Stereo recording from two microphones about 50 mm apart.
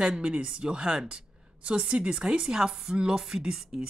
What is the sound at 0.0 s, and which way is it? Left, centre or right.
A woman's voice, centre.